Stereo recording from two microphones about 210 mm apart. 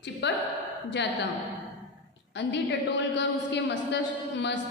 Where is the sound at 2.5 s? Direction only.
55° left (ahead or behind).